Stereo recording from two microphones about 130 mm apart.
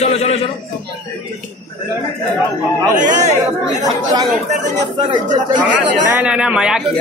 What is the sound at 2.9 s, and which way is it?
Speech, 75° right (ahead or behind).